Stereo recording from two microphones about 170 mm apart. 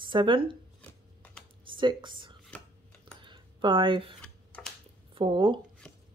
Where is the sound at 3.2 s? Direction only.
30° right (ahead or behind).